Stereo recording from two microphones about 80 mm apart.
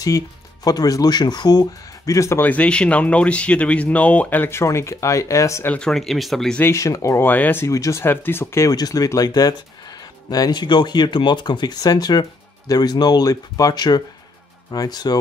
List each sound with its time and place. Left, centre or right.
0.7 s speech: left
2.1 s speech: left
2.4 s speech: centre
4.6 s speech: left
5.7 s speech: centre
6.6 s speech: left
7.2 s speech: left
7.6 s speech: left
8.0 s speech: left
8.7 s speech: left